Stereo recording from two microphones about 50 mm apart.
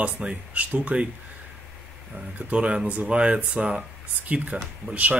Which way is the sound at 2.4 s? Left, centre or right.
Right.